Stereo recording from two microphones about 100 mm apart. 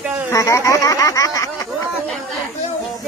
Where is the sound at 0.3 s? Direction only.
30° left (ahead or behind).